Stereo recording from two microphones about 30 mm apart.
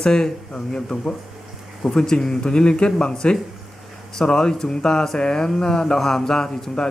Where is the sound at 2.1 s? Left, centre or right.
Left.